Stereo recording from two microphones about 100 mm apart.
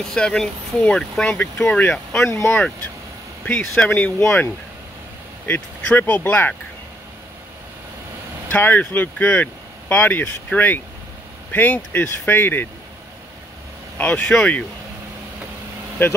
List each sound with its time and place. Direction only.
0.0 s speech: 10° left (ahead or behind)
2.3 s speech: 25° left (ahead or behind)
3.4 s speech: 10° left (ahead or behind)
5.5 s speech: 15° left (ahead or behind)
8.5 s speech: 15° left (ahead or behind)
13.9 s speech: 15° left (ahead or behind)
16.0 s speech: 20° left (ahead or behind)